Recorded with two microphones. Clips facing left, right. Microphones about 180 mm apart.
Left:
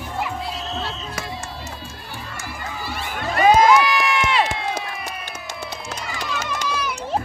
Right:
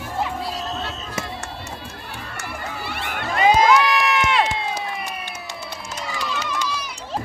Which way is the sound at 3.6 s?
Centre (ahead or behind).